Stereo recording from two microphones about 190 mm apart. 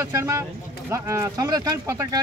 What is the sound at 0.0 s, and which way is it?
Speech, 15° right (ahead or behind).